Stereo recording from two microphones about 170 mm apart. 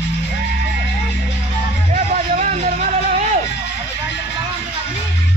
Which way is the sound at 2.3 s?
45° right (ahead or behind).